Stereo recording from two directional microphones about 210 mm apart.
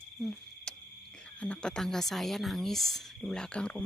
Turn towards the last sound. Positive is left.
turn(degrees=5)  # may be behind; listen again after turning